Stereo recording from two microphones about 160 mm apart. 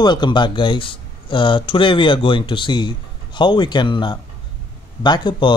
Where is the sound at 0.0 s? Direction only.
30° left (ahead or behind).